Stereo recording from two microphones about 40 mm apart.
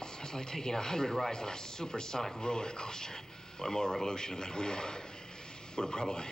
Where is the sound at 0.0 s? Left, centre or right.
Centre.